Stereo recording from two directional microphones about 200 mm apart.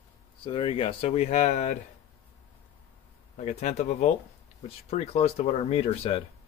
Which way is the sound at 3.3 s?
35° left (ahead or behind).